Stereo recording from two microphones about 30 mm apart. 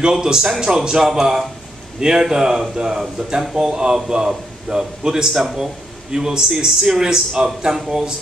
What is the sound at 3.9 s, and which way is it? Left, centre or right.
A man's voice, centre.